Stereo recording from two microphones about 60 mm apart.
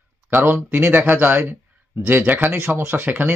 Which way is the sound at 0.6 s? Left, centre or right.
Right.